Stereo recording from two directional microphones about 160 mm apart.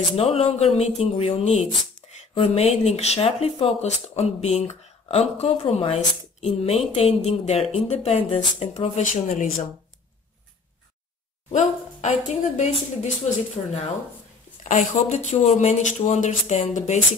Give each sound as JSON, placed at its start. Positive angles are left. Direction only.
{"t": 0.1, "sound": "speech", "side_deg": 35}
{"t": 11.5, "sound": "a woman's voice", "side_deg": 45}
{"t": 14.6, "sound": "speech", "side_deg": 50}